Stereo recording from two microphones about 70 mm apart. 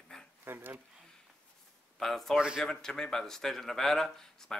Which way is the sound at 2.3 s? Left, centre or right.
Centre.